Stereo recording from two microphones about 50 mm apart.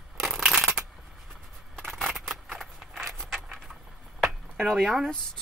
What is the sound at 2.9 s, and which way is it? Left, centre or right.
Keys jangling, centre.